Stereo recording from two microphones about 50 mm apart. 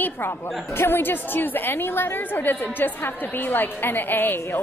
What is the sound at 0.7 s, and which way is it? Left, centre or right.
A woman's voice, left.